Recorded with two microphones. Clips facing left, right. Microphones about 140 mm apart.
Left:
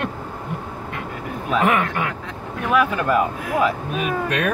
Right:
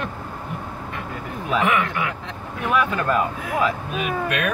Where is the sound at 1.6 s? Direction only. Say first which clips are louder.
Left 3 dB; 40° left (ahead or behind).